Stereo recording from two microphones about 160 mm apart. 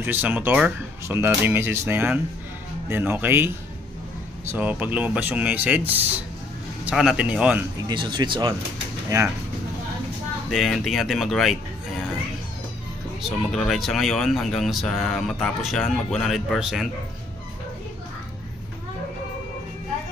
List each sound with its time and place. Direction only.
0.0 s speech: 10° right (ahead or behind)
7.9 s speech: 30° right (ahead or behind)
10.5 s speech: centre (ahead or behind)
13.2 s speech: centre (ahead or behind)